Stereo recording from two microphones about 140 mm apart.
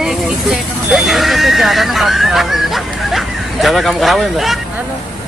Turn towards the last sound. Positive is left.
turn(degrees=0)  # may be behind; listen again after turning